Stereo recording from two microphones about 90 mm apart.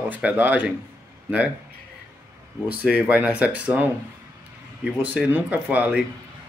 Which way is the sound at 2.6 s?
15° right (ahead or behind).